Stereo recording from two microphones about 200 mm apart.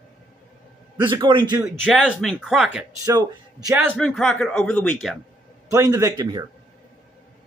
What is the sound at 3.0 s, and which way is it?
Speech, 15° right (ahead or behind).